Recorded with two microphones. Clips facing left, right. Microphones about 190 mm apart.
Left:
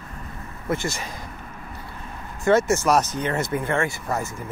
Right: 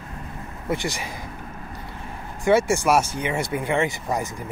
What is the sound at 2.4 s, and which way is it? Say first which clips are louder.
Speech: even; 10° right (ahead or behind).